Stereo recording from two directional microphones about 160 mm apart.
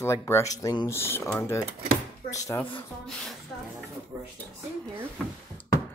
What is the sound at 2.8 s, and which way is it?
Speech, 5° left (ahead or behind).